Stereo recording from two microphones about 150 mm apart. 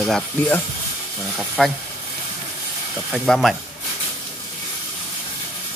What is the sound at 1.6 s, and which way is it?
Speech, 5° left (ahead or behind).